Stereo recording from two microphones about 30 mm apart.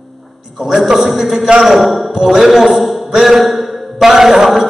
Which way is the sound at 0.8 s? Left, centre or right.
Centre.